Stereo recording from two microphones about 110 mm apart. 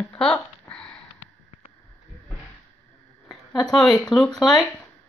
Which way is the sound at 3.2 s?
Centre (ahead or behind).